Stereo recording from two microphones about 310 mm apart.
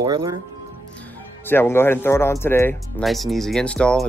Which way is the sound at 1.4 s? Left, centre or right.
Centre.